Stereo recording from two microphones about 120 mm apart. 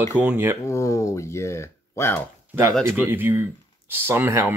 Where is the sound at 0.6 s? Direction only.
25° left (ahead or behind).